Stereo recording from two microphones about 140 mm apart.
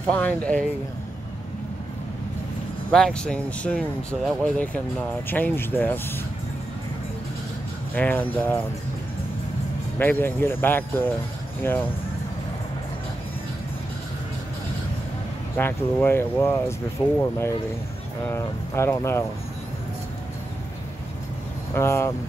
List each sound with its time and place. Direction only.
0.1 s speech: 10° left (ahead or behind)
2.9 s speech: 5° left (ahead or behind)
7.9 s speech: 10° left (ahead or behind)
9.9 s speech: 15° left (ahead or behind)
15.5 s speech: 15° left (ahead or behind)
17.0 s speech: 30° left (ahead or behind)
18.2 s speech: 15° left (ahead or behind)
21.7 s speech: 20° left (ahead or behind)